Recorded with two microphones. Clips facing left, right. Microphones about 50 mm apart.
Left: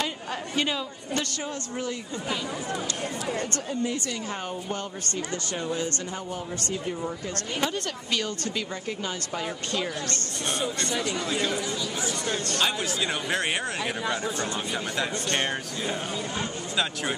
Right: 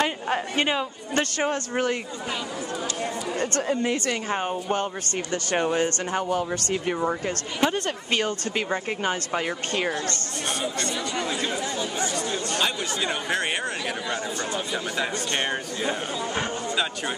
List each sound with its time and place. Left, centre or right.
0.0 s speech: right
3.6 s speech: right
4.3 s speech: right
5.3 s speech: right
6.3 s speech: right
7.6 s speech: right
12.4 s speech: centre
15.3 s speech: centre